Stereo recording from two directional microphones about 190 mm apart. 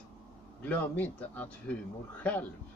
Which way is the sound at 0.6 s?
10° left (ahead or behind).